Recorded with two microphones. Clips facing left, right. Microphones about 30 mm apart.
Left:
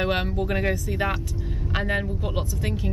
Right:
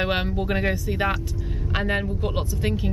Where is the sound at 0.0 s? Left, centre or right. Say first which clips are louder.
Even; centre.